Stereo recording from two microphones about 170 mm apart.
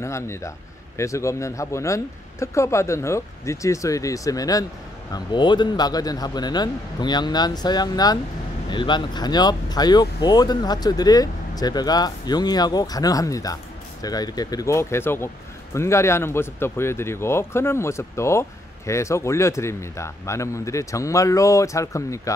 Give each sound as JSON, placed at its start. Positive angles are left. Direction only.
{"t": 0.0, "sound": "speech", "side_deg": 15}